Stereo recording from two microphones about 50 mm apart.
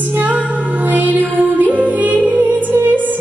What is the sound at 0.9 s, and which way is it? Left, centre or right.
Music, right.